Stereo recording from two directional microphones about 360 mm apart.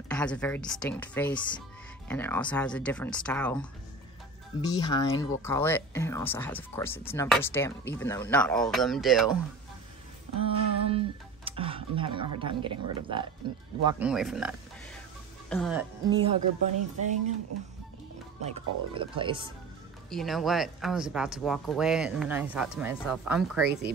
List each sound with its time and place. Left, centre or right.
0.1 s speech: centre
10.4 s music: centre
12.4 s speech: centre
15.5 s speech: centre
16.2 s speech: centre
18.4 s speech: centre
20.1 s speech: centre